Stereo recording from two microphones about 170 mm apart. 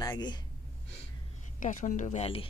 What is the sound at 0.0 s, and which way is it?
Speech, 25° left (ahead or behind).